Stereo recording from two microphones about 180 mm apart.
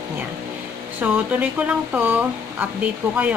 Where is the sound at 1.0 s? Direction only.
10° right (ahead or behind).